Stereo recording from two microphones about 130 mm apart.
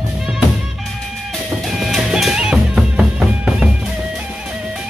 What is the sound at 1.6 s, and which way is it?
Music, centre (ahead or behind).